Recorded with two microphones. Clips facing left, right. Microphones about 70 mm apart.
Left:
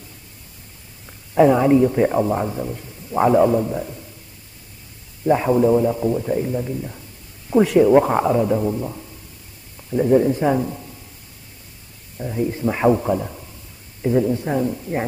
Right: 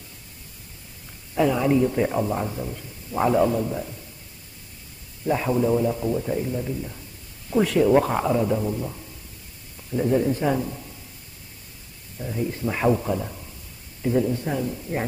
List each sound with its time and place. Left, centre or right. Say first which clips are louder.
1.3 s a man's voice: left 7 dB; left
5.2 s a man's voice: left 6 dB; centre
12.2 s a man's voice: left 5 dB; centre